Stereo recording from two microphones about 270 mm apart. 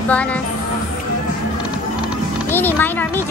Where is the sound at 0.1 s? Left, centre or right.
Centre.